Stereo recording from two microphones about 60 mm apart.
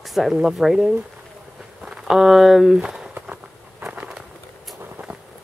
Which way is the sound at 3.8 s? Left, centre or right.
Right.